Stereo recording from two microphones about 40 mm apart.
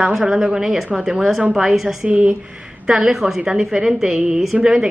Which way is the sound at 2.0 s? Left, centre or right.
Right.